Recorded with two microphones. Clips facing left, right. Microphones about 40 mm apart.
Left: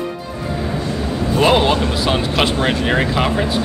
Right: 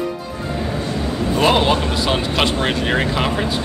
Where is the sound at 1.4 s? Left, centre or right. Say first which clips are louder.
Left 2 dB; centre.